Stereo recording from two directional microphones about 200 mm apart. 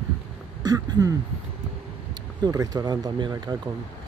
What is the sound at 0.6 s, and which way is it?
Speech, 20° right (ahead or behind).